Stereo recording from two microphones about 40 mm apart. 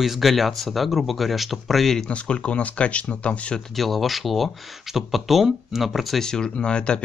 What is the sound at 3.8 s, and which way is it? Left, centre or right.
Speech, centre.